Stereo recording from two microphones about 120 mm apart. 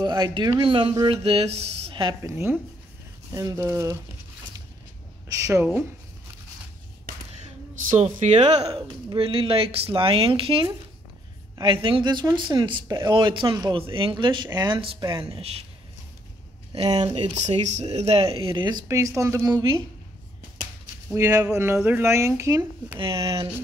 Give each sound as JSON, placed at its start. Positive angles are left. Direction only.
{"t": 0.0, "sound": "speech", "side_deg": -35}
{"t": 2.2, "sound": "speech", "side_deg": -20}
{"t": 5.3, "sound": "speech", "side_deg": -25}
{"t": 7.7, "sound": "speech", "side_deg": -75}
{"t": 9.1, "sound": "speech", "side_deg": -50}
{"t": 16.9, "sound": "speech", "side_deg": -45}
{"t": 17.3, "sound": "speech", "side_deg": -70}
{"t": 18.9, "sound": "speech", "side_deg": -25}
{"t": 21.1, "sound": "speech", "side_deg": -25}
{"t": 22.6, "sound": "speech", "side_deg": -45}
{"t": 23.1, "sound": "speech", "side_deg": -30}